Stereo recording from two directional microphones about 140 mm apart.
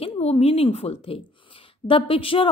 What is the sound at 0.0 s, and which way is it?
A woman's voice, 45° left (ahead or behind).